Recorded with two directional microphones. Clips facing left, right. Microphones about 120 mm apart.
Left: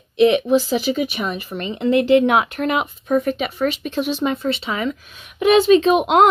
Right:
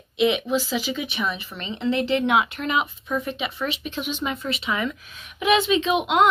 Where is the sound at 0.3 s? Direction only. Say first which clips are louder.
Left 7 dB; 45° left (ahead or behind).